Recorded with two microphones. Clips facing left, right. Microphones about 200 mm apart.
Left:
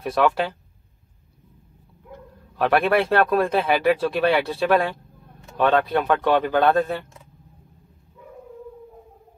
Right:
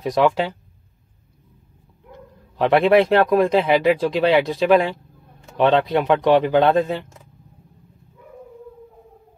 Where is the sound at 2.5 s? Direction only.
20° right (ahead or behind).